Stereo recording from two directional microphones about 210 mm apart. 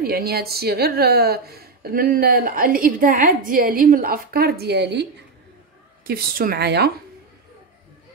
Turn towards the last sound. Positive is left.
turn(degrees=-50)  # may be behind; listen again after turning